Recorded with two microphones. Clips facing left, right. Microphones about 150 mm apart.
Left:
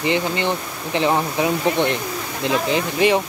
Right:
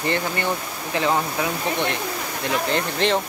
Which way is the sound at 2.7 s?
10° left (ahead or behind).